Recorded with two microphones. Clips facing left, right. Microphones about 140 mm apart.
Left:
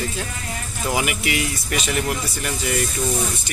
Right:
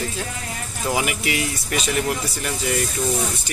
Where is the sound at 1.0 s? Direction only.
35° right (ahead or behind).